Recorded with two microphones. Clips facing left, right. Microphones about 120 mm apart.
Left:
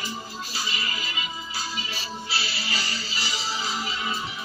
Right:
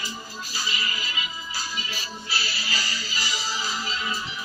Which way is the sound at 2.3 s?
25° left (ahead or behind).